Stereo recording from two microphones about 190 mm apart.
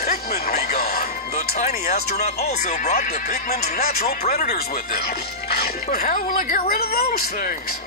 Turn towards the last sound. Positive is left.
turn(degrees=50)  # may be behind; listen again after turning